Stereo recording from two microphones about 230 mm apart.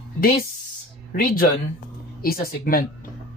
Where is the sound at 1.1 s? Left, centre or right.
Left.